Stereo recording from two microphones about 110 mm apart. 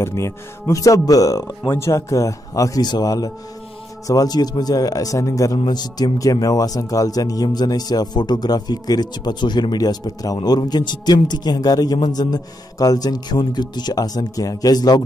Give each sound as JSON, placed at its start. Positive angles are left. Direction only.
{"t": 0.0, "sound": "speech", "side_deg": 25}